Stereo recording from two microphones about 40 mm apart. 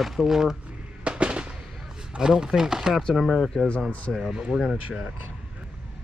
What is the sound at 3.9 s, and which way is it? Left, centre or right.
Speech, left.